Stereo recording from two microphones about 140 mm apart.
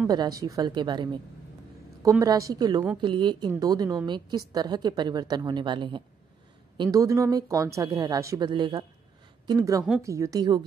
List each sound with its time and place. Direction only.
0.1 s a woman's voice: 30° right (ahead or behind)
6.8 s a woman's voice: 25° right (ahead or behind)